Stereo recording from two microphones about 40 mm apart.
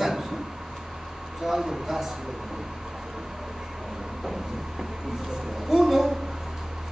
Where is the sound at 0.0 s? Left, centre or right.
Centre.